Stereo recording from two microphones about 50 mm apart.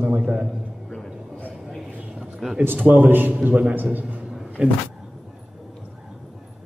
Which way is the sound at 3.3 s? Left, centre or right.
Right.